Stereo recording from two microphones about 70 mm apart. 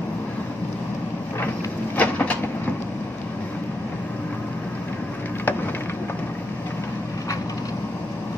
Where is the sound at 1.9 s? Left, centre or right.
Left.